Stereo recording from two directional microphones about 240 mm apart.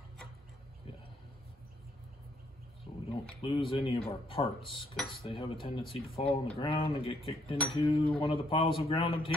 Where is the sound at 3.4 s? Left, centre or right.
Left.